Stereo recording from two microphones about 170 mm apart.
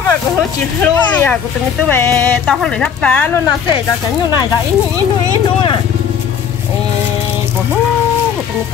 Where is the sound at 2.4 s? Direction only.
Centre (ahead or behind).